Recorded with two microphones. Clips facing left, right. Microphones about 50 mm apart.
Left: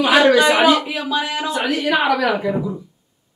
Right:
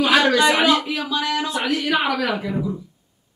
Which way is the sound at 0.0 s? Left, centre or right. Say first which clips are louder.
Left 3 dB; centre.